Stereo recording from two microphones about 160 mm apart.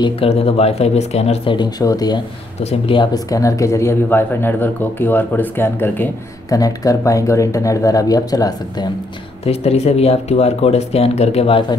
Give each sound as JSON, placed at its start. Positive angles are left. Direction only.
{"t": 0.0, "sound": "speech", "side_deg": 35}
{"t": 3.3, "sound": "speech", "side_deg": 20}
{"t": 9.4, "sound": "speech", "side_deg": 40}